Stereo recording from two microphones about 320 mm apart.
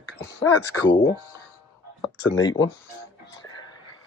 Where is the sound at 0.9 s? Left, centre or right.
Left.